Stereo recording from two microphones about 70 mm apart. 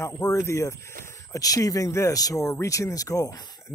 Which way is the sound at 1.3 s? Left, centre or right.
Left.